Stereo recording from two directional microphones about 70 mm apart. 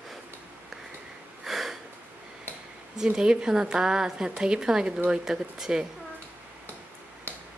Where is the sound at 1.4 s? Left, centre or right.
Centre.